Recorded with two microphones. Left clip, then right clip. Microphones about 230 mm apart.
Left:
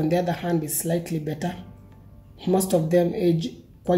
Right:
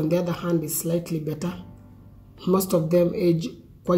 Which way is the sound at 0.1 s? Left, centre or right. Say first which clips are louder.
Left 1 dB; centre.